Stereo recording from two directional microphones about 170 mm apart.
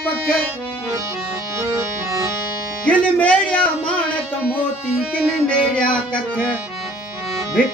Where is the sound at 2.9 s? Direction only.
10° left (ahead or behind).